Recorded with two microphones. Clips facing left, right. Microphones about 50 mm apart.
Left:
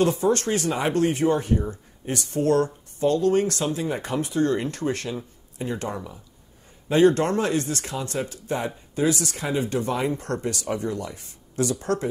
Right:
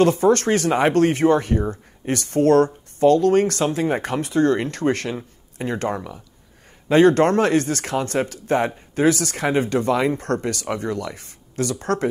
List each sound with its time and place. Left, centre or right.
0.0 s speech: right